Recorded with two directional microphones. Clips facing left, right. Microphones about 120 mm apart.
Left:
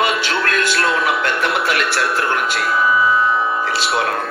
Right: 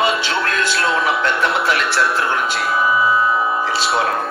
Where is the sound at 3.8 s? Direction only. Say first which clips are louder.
Right 1 dB; 25° right (ahead or behind).